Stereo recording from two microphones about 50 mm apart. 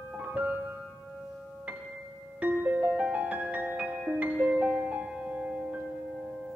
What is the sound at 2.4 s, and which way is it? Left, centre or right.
Music, right.